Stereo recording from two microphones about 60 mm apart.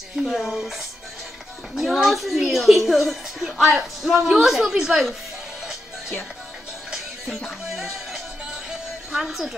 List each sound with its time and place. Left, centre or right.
0.3 s a woman's voice: centre
1.8 s a woman's voice: centre
7.4 s music: centre